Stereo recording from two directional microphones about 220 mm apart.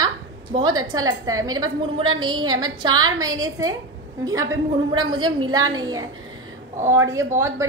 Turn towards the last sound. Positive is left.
turn(degrees=-10)  # may be behind; listen again after turning